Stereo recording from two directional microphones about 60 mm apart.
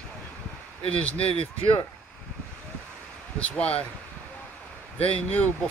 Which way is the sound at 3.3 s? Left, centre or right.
Left.